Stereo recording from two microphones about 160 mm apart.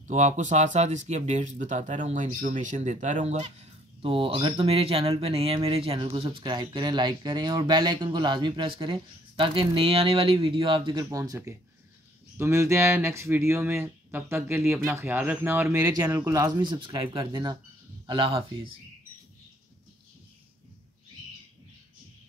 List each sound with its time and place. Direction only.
0.0 s speech: 50° right (ahead or behind); by 11.1 s 30° right (ahead or behind)
11.1 s speech: 20° right (ahead or behind)